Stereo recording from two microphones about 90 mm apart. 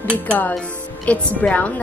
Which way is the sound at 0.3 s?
20° left (ahead or behind).